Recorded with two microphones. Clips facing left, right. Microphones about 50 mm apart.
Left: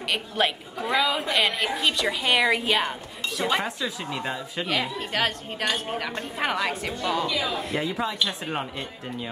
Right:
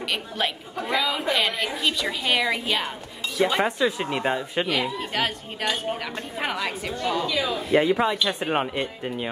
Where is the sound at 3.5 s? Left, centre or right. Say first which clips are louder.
Right 5 dB; right.